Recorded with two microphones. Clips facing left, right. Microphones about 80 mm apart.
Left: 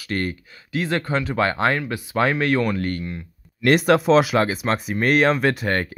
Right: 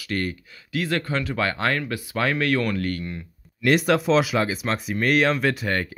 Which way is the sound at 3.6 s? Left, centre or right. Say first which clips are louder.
Left 3 dB; left.